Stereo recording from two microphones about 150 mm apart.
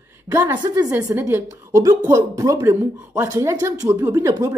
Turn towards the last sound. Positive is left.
turn(degrees=-20)  # may be behind; listen again after turning